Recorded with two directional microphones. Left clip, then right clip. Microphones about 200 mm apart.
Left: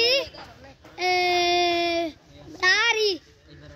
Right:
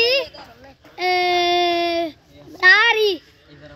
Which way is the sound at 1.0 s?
30° right (ahead or behind).